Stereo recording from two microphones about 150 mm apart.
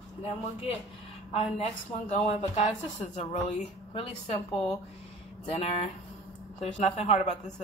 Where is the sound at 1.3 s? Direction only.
50° left (ahead or behind).